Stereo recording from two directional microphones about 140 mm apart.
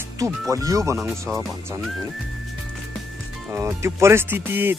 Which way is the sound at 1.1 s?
Centre (ahead or behind).